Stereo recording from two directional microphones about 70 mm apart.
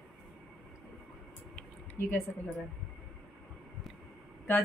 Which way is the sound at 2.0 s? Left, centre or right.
Left.